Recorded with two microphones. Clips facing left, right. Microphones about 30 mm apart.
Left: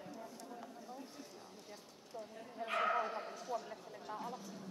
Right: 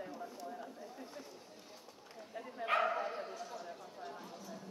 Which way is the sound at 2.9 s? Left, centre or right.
Centre.